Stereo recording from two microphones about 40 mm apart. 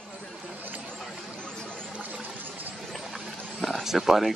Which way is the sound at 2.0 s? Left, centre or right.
Right.